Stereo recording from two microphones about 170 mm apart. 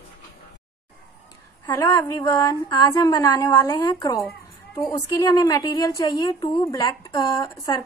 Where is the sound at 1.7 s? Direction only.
15° left (ahead or behind).